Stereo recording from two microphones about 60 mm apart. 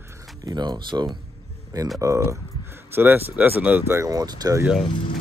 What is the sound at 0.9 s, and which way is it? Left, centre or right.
Speech, right.